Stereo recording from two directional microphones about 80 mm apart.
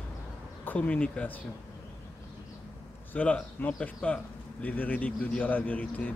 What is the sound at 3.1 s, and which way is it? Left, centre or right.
Speech, centre.